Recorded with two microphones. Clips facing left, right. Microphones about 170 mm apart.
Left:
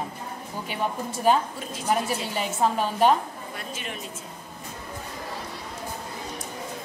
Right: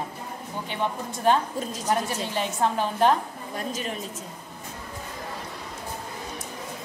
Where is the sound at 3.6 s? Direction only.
40° right (ahead or behind).